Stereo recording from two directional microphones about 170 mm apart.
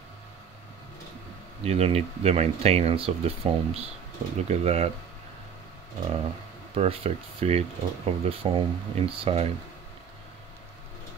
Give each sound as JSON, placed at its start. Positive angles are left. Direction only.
{"t": 1.6, "sound": "speech", "side_deg": -35}
{"t": 6.7, "sound": "speech", "side_deg": -35}